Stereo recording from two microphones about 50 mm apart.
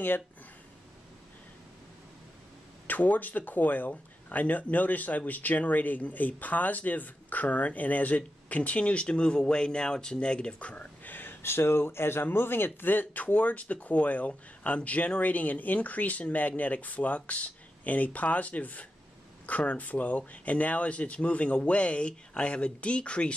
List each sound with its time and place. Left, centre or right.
2.9 s speech: left
11.4 s speech: left